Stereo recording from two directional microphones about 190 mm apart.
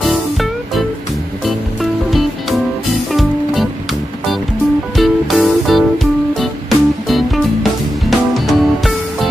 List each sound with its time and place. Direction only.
0.0 s music: centre (ahead or behind)
4.9 s music: centre (ahead or behind)